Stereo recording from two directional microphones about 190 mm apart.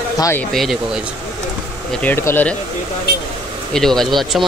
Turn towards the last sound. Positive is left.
turn(degrees=0)  # may be behind; listen again after turning